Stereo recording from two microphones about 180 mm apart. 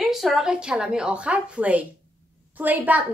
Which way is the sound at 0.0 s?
Centre (ahead or behind).